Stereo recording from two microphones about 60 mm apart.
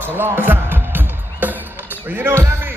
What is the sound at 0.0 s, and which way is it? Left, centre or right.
Music, right.